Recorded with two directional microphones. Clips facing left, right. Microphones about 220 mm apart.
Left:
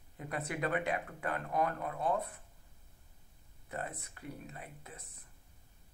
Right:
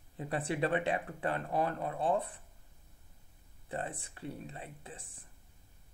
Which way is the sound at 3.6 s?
30° right (ahead or behind).